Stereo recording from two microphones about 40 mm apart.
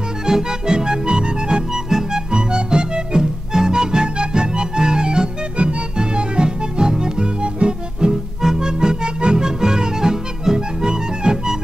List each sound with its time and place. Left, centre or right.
0.3 s accordion: centre
1.9 s music: centre
2.3 s music: right